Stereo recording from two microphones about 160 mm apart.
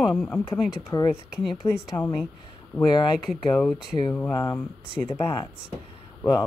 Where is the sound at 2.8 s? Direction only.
25° left (ahead or behind).